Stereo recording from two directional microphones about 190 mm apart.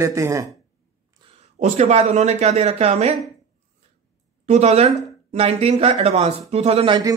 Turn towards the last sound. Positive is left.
turn(degrees=-25)  # may be behind; listen again after turning